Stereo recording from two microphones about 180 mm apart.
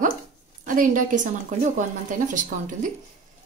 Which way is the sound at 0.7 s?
50° right (ahead or behind).